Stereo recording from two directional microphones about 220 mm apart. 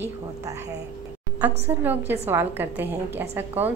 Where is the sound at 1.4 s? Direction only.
10° right (ahead or behind).